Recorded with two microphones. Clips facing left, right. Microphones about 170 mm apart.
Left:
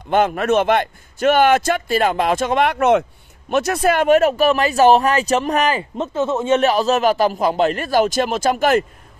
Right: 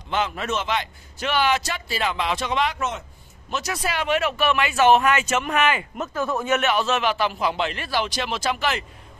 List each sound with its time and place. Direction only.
0.1 s a man's voice: 55° left (ahead or behind)